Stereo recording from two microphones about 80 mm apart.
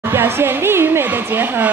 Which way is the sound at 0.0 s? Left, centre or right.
Right.